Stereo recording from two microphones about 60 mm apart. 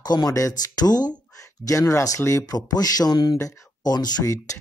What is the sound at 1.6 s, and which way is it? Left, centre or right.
Speech, left.